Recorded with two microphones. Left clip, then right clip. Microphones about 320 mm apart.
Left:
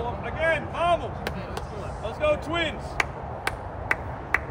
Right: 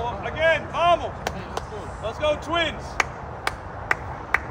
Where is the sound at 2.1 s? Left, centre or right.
Centre.